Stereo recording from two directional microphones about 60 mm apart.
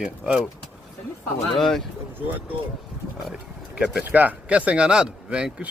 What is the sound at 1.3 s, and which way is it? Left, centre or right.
Speech, centre.